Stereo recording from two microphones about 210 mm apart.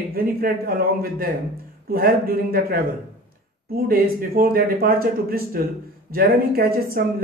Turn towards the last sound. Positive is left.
turn(degrees=-45)  # may be behind; listen again after turning